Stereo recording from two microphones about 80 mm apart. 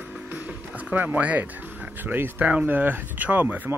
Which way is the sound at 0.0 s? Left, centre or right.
Right.